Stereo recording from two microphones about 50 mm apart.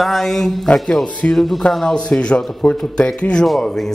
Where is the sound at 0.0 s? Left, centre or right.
Centre.